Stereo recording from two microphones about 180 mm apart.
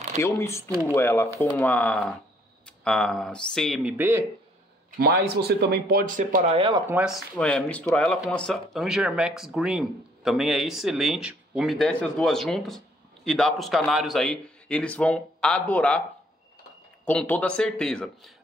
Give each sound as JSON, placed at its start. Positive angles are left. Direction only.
{"t": 0.2, "sound": "speech", "side_deg": 15}
{"t": 5.0, "sound": "speech", "side_deg": -60}
{"t": 6.5, "sound": "speech", "side_deg": -30}
{"t": 6.9, "sound": "speech", "side_deg": -5}
{"t": 17.0, "sound": "speech", "side_deg": 10}